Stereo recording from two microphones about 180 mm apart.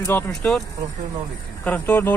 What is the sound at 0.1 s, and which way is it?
Speech, 10° left (ahead or behind).